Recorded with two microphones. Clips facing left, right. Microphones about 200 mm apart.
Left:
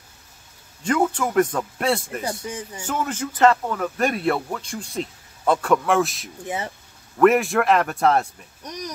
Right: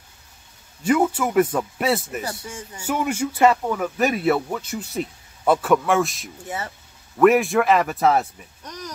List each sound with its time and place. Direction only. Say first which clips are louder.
0.8 s a man's voice: right 2 dB; 10° right (ahead or behind)
2.2 s speech: left 3 dB; 20° left (ahead or behind)
2.8 s speech: right 4 dB; 10° right (ahead or behind)
6.4 s speech: left 2 dB; 20° left (ahead or behind)
7.2 s speech: right 1 dB; centre (ahead or behind)
8.6 s a sound: left 3 dB; 15° left (ahead or behind)